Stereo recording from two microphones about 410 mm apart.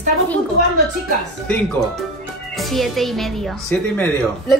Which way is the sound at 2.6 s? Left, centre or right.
Centre.